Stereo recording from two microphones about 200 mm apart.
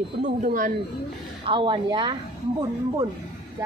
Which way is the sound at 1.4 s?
25° right (ahead or behind).